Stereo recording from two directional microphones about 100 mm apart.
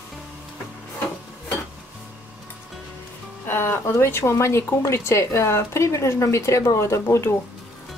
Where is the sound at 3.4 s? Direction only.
20° left (ahead or behind).